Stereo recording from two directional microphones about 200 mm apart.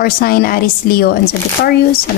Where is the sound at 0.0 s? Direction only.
50° left (ahead or behind).